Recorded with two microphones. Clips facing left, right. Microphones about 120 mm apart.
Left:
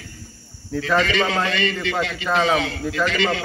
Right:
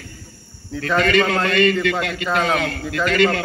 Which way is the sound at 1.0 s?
50° right (ahead or behind).